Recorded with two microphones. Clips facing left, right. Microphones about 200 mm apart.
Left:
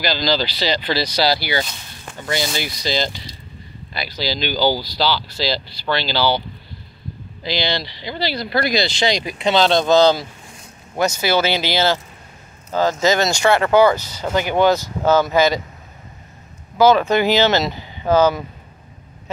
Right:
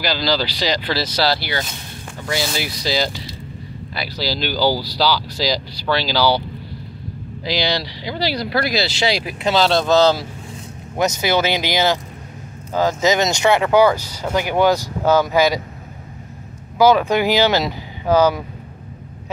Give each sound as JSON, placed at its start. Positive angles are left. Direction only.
{"t": 0.2, "sound": "speech", "side_deg": -10}
{"t": 7.4, "sound": "speech", "side_deg": -10}
{"t": 11.0, "sound": "speech", "side_deg": -20}
{"t": 16.7, "sound": "speech", "side_deg": -10}